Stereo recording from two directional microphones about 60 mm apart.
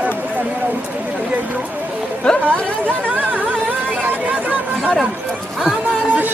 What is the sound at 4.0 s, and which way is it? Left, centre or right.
Chatter, right.